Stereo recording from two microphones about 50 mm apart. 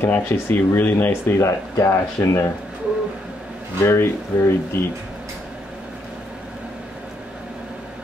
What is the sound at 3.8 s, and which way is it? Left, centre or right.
Speech, left.